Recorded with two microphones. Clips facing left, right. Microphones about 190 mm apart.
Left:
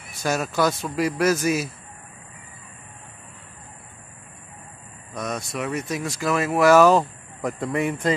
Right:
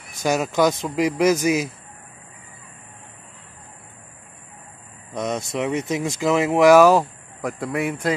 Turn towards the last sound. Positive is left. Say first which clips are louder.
# even
turn(degrees=-5)  # may be behind; listen again after turning